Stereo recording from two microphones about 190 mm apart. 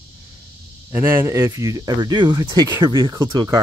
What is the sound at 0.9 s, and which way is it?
Speech, 10° right (ahead or behind).